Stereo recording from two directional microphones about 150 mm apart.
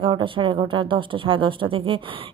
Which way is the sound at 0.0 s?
35° right (ahead or behind).